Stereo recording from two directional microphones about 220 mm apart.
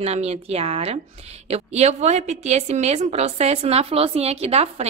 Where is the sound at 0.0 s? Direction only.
30° right (ahead or behind).